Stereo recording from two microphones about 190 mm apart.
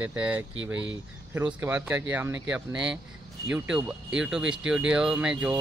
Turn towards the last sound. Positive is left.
turn(degrees=-5)  # may be behind; listen again after turning